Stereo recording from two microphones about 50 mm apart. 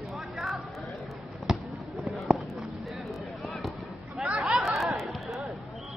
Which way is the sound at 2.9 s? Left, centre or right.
Centre.